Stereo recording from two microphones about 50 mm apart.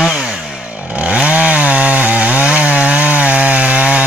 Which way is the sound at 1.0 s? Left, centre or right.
Right.